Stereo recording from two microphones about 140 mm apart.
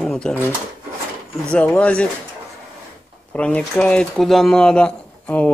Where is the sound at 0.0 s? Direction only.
10° left (ahead or behind).